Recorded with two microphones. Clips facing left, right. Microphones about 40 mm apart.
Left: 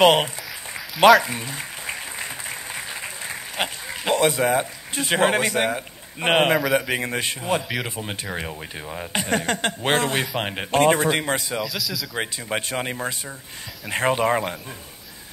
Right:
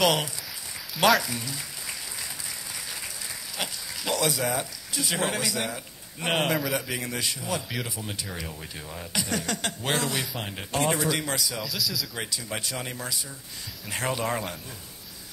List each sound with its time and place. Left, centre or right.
0.0 s speech: left
1.2 s a sound: left
6.7 s speech: left
11.6 s speech: centre
12.2 s speech: left